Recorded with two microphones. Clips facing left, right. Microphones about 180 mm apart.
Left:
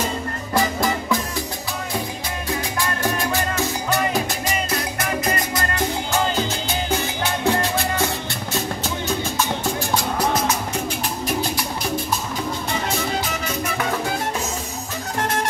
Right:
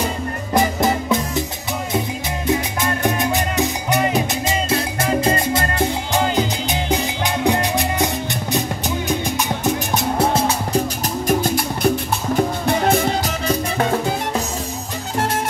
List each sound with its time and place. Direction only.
0.6 s music: 20° right (ahead or behind)
2.4 s music: 20° right (ahead or behind)
11.2 s music: 50° right (ahead or behind)
13.2 s music: 40° right (ahead or behind)